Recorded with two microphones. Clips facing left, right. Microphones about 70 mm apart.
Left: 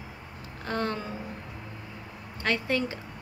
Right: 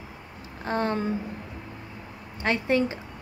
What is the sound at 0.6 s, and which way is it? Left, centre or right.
Speech, right.